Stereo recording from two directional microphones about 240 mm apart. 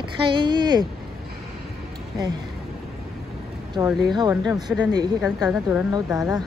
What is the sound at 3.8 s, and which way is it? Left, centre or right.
Speech, centre.